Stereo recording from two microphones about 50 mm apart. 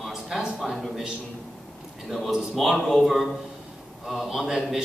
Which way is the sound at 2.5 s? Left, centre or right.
Centre.